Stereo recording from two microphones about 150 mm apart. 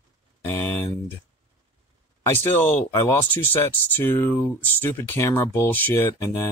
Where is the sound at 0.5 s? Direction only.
15° left (ahead or behind).